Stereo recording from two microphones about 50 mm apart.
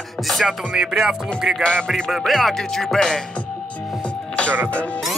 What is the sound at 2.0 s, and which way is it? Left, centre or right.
Music, centre.